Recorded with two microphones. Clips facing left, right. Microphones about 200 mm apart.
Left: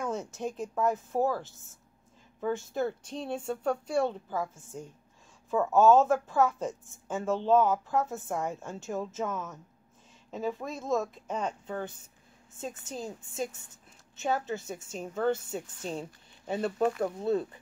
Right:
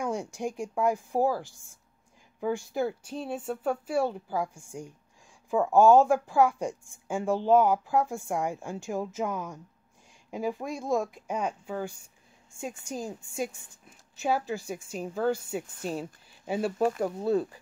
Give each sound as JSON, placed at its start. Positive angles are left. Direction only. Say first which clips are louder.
{"t": 0.0, "sound": "a woman's voice", "louder": "right 2 dB", "side_deg": -10}
{"t": 14.4, "sound": "a woman's voice", "louder": "right 1 dB", "side_deg": 20}
{"t": 15.0, "sound": "a woman's voice", "louder": "right 1 dB", "side_deg": -5}